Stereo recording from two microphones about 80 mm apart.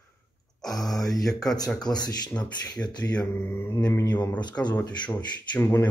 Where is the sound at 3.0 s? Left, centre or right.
Centre.